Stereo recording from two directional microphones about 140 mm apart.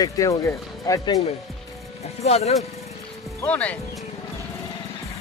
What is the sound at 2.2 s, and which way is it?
Speech, 50° left (ahead or behind).